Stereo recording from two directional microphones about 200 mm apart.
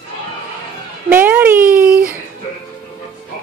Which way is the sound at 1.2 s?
10° right (ahead or behind).